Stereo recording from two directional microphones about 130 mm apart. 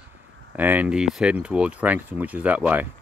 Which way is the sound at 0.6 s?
15° right (ahead or behind).